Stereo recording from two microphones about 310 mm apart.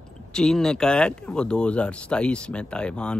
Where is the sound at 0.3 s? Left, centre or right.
Centre.